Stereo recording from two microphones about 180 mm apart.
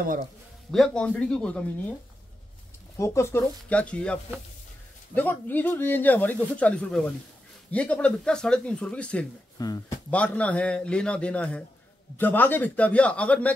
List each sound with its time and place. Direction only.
0.7 s speech: 5° left (ahead or behind)
3.0 s speech: 15° left (ahead or behind)
9.6 s speech: 20° left (ahead or behind)
10.1 s speech: 5° left (ahead or behind)